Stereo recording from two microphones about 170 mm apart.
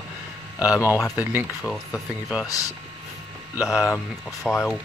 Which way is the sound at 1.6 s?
Centre (ahead or behind).